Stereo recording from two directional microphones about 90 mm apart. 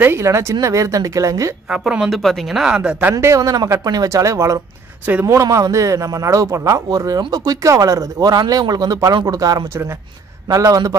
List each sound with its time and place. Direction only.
0.0 s a man's voice: 30° right (ahead or behind)
1.7 s speech: 10° right (ahead or behind)
3.3 s a man's voice: 40° right (ahead or behind)